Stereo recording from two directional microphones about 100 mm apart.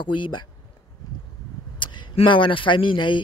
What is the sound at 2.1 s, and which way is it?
Speech, 60° left (ahead or behind).